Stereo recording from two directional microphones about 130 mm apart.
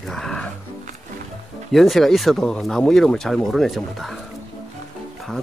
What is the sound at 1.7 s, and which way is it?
Speech, centre (ahead or behind).